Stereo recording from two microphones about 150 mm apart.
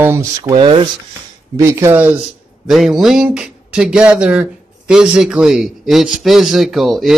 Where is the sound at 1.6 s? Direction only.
20° right (ahead or behind).